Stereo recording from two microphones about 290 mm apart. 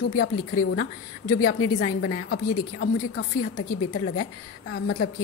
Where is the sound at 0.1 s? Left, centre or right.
Left.